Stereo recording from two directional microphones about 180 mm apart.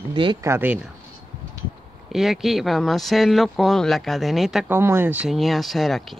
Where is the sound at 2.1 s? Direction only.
Centre (ahead or behind).